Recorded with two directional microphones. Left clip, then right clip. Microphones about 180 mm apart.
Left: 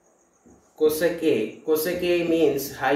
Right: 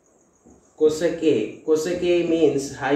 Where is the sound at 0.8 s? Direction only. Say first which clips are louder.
Right 2 dB; 15° right (ahead or behind).